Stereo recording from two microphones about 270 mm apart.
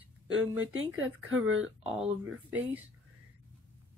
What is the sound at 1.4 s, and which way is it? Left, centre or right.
Speech, centre.